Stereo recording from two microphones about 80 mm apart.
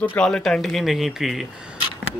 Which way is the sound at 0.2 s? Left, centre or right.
Centre.